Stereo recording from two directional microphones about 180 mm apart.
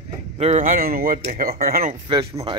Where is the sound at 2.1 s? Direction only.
25° right (ahead or behind).